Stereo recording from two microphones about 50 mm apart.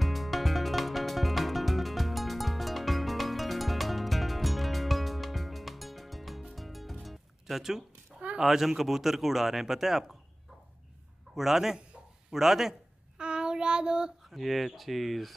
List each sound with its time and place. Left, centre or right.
0.0 s music: centre
8.4 s speech: centre
11.3 s speech: centre
13.2 s child singing: centre
14.3 s speech: centre